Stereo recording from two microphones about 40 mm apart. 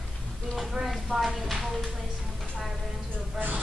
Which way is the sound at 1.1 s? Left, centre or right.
Centre.